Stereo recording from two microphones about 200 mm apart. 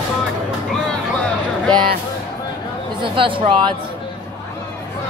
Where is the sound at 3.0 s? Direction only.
25° right (ahead or behind).